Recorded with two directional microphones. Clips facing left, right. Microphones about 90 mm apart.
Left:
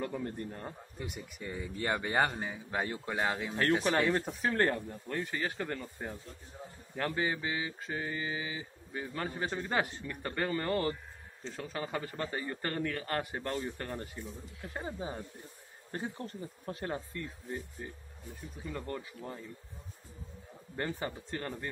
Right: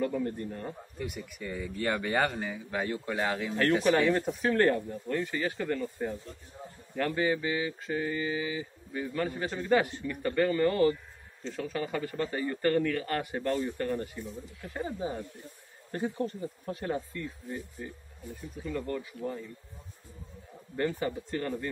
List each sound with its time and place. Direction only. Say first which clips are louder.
0.0 s mantra: right 6 dB; 30° left (ahead or behind)
16.7 s speech: right 4 dB; 30° left (ahead or behind)
18.7 s mantra: right 5 dB; 25° left (ahead or behind)
20.7 s mantra: right 6 dB; 30° left (ahead or behind)